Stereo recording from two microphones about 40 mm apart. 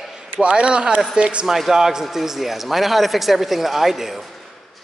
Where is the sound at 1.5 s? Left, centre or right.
Centre.